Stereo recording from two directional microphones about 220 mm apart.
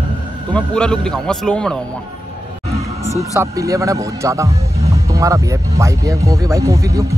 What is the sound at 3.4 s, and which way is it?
Speech, 15° right (ahead or behind).